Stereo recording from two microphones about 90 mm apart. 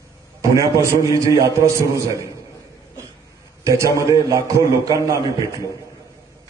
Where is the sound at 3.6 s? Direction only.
35° right (ahead or behind).